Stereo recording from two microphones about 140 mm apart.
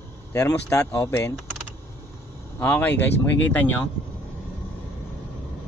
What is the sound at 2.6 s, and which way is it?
Speech, 15° left (ahead or behind).